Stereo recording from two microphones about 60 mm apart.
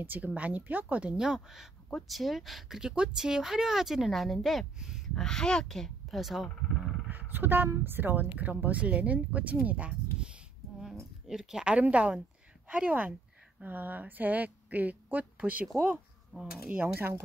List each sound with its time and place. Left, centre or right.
0.0 s speech: right
1.1 s speech: centre
2.8 s speech: centre
4.7 s speech: centre
5.1 s speech: centre
6.0 s speech: centre
7.1 s speech: right
11.2 s speech: centre
16.8 s speech: right